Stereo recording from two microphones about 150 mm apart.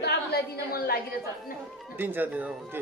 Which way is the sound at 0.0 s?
90° left.